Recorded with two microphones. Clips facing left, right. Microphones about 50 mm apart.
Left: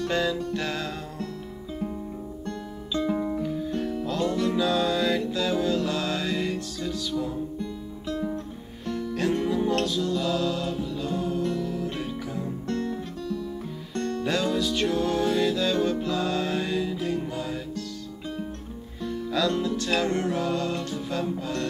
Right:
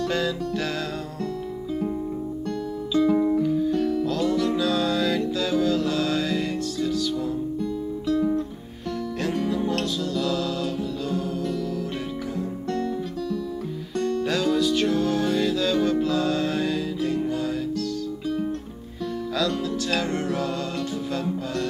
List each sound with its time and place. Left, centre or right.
0.0 s music: centre
3.1 s music: centre
3.8 s music: left
4.6 s music: centre
9.2 s music: centre
14.2 s music: centre
19.3 s music: centre